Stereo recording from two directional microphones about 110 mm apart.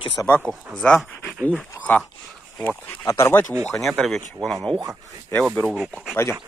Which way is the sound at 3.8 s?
Centre (ahead or behind).